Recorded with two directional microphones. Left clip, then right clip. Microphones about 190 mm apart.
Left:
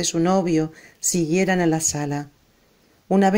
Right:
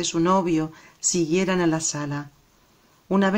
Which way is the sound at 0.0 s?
15° left (ahead or behind).